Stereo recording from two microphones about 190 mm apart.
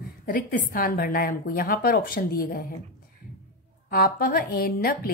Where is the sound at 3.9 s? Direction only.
50° left (ahead or behind).